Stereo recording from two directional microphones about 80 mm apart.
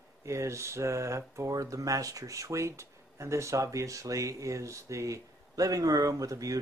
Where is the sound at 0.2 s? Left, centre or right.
Right.